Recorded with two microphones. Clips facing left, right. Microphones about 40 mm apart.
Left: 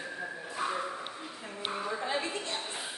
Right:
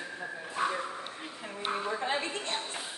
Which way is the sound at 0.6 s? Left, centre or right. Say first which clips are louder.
Right 3 dB; right.